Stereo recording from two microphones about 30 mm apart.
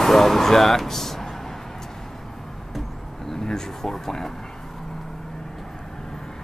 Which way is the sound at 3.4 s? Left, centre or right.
Centre.